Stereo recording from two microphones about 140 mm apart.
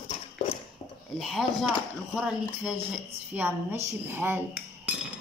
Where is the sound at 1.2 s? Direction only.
Centre (ahead or behind).